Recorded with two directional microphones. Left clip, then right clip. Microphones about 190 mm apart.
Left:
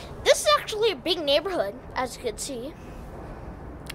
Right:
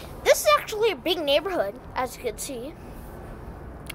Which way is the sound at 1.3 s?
10° left (ahead or behind).